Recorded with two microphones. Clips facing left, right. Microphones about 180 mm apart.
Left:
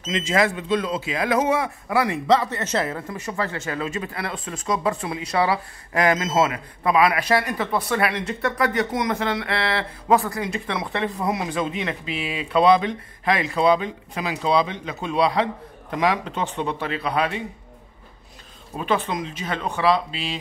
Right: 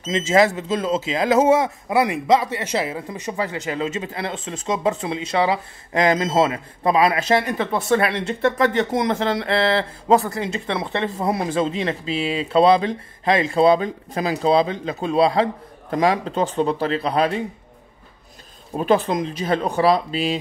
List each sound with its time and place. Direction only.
0.1 s speech: 30° right (ahead or behind)
18.8 s speech: 40° right (ahead or behind)